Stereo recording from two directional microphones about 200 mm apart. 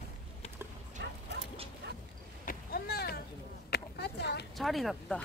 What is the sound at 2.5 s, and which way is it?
Boat, 50° left (ahead or behind).